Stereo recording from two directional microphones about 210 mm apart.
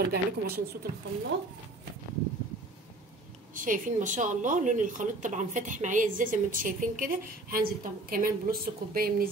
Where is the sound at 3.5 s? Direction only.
40° right (ahead or behind).